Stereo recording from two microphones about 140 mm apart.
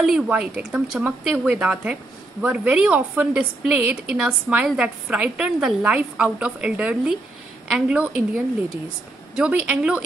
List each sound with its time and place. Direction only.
0.0 s a woman's voice: 5° right (ahead or behind)